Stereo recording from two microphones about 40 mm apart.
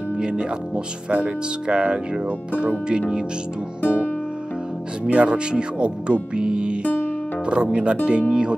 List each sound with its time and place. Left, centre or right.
0.2 s speech: right
3.8 s music: left
5.0 s speech: right
6.3 s music: right
7.4 s speech: right